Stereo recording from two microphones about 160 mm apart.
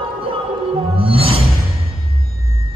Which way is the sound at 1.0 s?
35° right (ahead or behind).